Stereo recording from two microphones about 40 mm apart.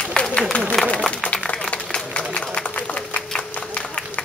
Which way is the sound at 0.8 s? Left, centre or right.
Centre.